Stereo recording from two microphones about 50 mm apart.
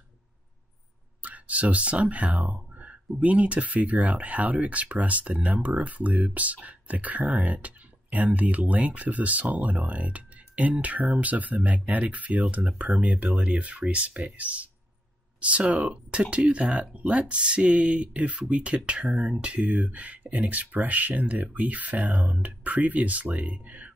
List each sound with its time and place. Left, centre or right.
1.2 s speech: right